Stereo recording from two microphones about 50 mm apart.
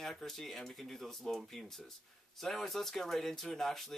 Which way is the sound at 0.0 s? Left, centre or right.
Centre.